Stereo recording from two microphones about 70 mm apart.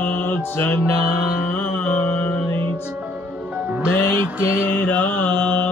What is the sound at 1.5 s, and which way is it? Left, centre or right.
Music, left.